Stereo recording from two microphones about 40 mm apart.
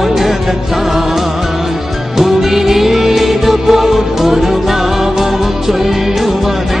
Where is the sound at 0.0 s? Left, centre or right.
Centre.